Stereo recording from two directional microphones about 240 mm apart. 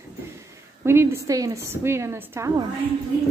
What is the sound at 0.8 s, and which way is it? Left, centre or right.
A woman's voice, centre.